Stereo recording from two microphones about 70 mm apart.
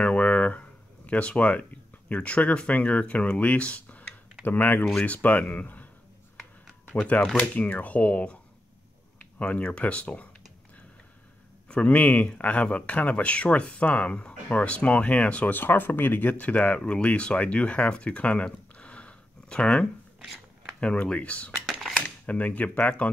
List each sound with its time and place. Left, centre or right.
0.0 s a sound: left
4.5 s speech: left
6.9 s speech: left
9.4 s speech: centre
11.7 s speech: centre